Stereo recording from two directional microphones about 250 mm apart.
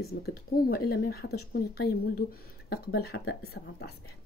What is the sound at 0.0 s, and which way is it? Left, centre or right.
Speech, left.